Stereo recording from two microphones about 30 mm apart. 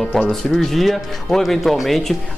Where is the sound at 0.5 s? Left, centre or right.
Centre.